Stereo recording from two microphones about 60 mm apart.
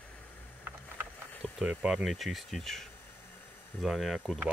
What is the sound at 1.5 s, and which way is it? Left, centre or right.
Speech, centre.